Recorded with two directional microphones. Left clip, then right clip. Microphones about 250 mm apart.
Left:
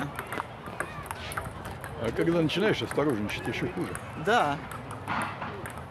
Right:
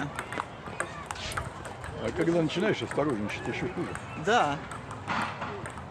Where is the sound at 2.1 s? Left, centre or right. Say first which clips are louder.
Left 1 dB; left.